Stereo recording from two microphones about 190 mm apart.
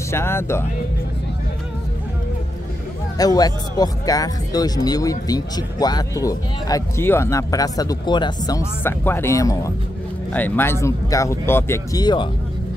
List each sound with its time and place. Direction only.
0.1 s speech: 15° left (ahead or behind)
3.2 s speech: 20° left (ahead or behind)